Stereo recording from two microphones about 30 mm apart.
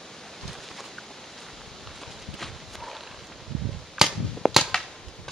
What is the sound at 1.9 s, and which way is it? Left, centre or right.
Clip-clop, centre.